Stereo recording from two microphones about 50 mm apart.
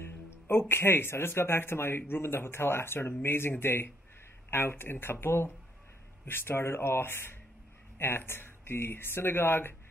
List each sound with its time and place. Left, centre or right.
0.0 s a man's voice: left